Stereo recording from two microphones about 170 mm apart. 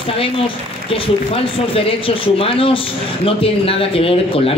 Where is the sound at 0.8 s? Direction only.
35° left (ahead or behind).